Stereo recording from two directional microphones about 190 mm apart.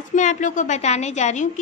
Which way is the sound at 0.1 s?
40° left (ahead or behind).